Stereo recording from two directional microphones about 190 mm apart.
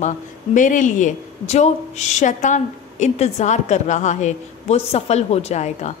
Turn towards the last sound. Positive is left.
turn(degrees=35)  # may be behind; listen again after turning